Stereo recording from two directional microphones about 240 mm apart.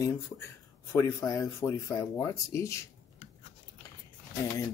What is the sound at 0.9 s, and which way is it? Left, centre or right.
Speech, centre.